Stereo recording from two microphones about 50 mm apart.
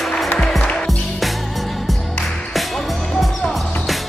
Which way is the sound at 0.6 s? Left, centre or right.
Left.